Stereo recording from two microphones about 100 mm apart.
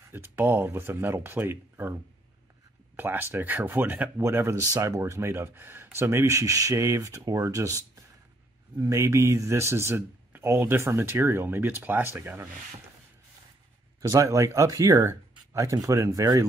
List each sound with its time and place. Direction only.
0.1 s speech: 20° right (ahead or behind)
3.0 s speech: 20° right (ahead or behind)
14.0 s speech: 35° right (ahead or behind)